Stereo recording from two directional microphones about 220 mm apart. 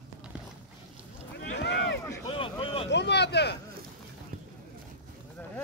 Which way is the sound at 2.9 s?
50° left (ahead or behind).